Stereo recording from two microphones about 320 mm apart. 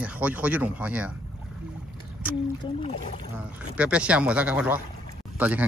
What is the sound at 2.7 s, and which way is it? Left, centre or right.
Speech, centre.